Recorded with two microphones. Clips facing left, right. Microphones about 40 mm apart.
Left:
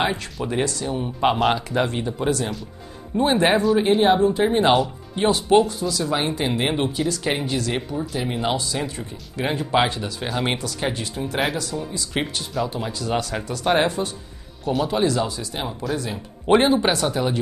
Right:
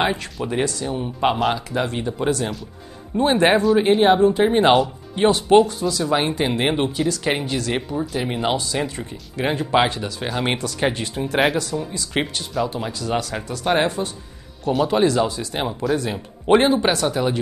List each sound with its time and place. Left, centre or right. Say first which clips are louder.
0.0 s speech: right 2 dB; centre
1.9 s speech: right 1 dB; centre
3.8 s speech: right 2 dB; centre
16.4 s speech: right 1 dB; centre